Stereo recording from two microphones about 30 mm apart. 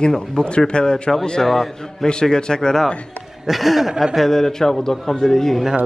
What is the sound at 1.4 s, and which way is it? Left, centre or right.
Speech, centre.